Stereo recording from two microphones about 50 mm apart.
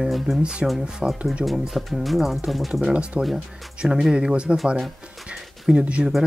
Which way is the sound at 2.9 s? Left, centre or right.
Right.